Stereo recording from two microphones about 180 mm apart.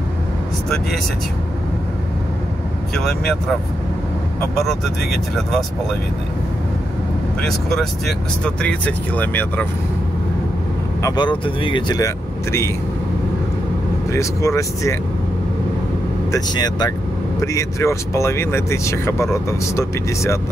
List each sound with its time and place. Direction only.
2.9 s speech: centre (ahead or behind)
4.6 s speech: centre (ahead or behind)
7.4 s speech: centre (ahead or behind)
11.0 s speech: 20° left (ahead or behind)
14.1 s speech: 15° left (ahead or behind)
16.3 s speech: 20° left (ahead or behind)